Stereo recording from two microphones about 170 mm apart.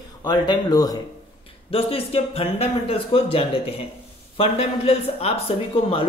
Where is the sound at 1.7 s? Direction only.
35° left (ahead or behind).